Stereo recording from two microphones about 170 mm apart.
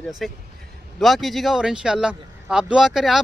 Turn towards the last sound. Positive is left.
turn(degrees=0)  # may be behind; listen again after turning